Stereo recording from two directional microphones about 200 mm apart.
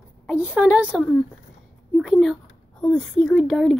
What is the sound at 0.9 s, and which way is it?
Speech, 5° left (ahead or behind).